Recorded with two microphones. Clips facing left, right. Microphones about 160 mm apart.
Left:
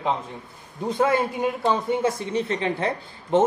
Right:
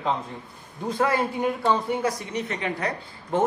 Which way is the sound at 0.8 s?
20° left (ahead or behind).